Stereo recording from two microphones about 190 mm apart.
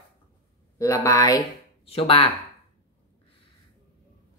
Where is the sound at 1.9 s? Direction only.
30° left (ahead or behind).